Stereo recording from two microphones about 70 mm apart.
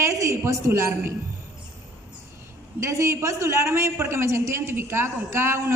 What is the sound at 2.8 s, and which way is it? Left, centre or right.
A man's voice, right.